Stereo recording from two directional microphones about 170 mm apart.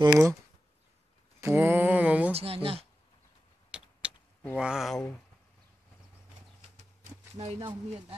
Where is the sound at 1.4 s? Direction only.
15° right (ahead or behind).